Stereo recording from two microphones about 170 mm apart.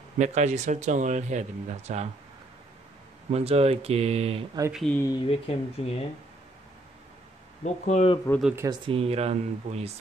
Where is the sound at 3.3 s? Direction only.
35° right (ahead or behind).